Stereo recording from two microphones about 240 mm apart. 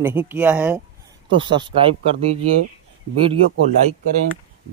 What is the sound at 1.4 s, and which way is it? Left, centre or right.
Speech, centre.